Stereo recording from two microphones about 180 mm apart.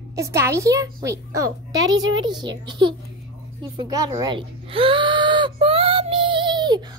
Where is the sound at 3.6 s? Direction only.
25° right (ahead or behind).